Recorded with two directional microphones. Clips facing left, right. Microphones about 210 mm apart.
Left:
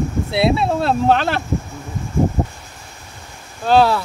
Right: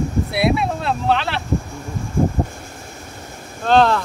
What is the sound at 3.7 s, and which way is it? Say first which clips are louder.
Speech: left 1 dB; 5° left (ahead or behind).